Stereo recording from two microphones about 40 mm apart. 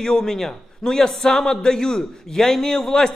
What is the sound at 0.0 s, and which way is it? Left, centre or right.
A man's voice, centre.